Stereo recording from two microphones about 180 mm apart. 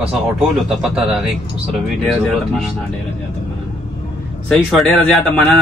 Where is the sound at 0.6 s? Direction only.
5° right (ahead or behind).